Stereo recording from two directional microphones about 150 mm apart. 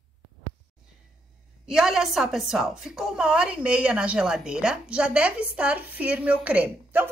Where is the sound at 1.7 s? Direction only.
5° right (ahead or behind).